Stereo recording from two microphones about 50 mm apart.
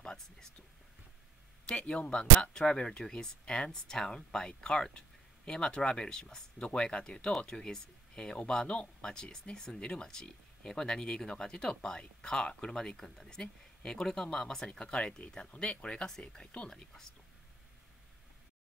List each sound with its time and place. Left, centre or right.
0.0 s speech: centre
1.7 s speech: left